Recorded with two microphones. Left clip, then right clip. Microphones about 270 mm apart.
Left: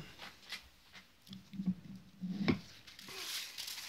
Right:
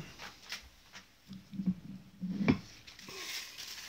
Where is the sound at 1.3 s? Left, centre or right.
Left.